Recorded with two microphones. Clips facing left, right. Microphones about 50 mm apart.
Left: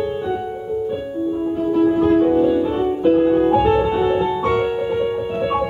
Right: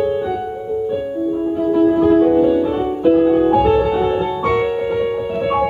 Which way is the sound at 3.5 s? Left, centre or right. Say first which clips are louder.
Right 2 dB; centre.